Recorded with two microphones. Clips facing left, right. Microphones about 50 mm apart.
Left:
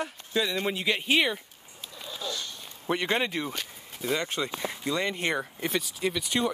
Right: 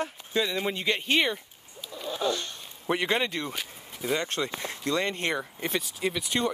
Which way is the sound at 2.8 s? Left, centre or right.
Centre.